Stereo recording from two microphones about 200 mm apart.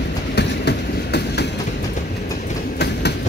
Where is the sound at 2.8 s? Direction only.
55° left (ahead or behind).